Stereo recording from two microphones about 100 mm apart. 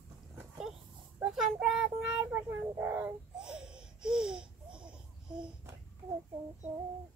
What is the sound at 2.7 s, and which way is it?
Child singing, 20° right (ahead or behind).